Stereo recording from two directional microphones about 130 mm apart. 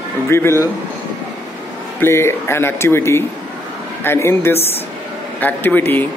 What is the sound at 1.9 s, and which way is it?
Speech, 20° left (ahead or behind).